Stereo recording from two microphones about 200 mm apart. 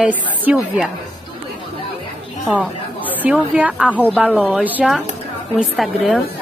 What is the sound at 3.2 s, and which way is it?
A woman's voice, 5° right (ahead or behind).